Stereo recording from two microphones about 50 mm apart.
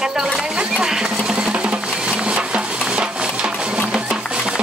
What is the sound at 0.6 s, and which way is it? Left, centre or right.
Music, centre.